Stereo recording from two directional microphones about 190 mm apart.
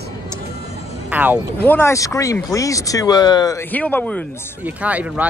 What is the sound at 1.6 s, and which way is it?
Speech, 10° left (ahead or behind).